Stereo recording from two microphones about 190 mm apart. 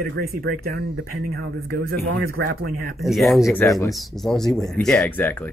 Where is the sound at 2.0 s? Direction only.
90° right.